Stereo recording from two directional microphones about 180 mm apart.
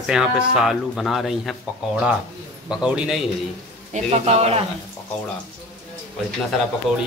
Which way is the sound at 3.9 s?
35° right (ahead or behind).